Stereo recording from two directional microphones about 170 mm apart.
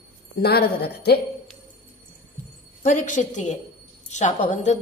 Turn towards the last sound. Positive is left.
turn(degrees=45)  # may be behind; listen again after turning